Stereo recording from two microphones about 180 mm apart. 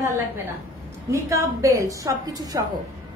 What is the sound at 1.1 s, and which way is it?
A woman's voice, 15° right (ahead or behind).